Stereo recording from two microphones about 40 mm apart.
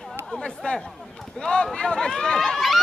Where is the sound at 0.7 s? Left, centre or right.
Centre.